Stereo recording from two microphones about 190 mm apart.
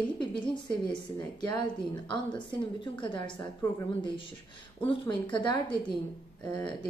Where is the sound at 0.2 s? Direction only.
25° left (ahead or behind).